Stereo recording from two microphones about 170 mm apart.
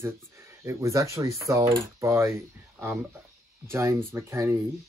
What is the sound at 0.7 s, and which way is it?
Speech, 15° right (ahead or behind).